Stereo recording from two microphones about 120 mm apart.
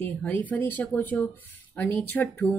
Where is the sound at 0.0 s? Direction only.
15° left (ahead or behind).